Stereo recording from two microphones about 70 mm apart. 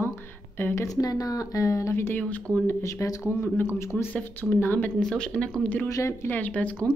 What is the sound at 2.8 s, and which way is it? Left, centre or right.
Speech, left.